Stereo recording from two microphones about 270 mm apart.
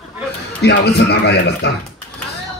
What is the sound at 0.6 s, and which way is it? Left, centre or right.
Speech, left.